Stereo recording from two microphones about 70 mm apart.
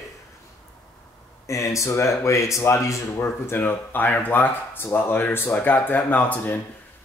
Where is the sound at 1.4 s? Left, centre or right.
Left.